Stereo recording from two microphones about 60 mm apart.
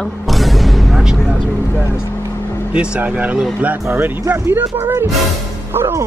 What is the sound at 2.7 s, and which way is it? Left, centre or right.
Speech, centre.